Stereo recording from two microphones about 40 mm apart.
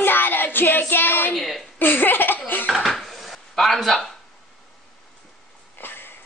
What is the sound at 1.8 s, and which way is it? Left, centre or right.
Speech, left.